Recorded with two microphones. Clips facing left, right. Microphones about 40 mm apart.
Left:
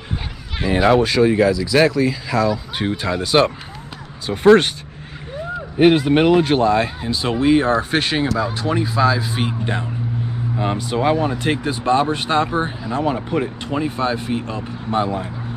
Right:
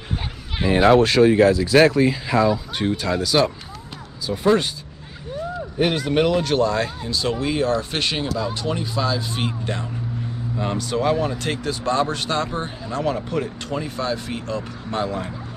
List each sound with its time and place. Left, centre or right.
1.0 s speech: right
2.0 s speech: right
2.8 s speech: centre
4.3 s speech: left
5.8 s speech: left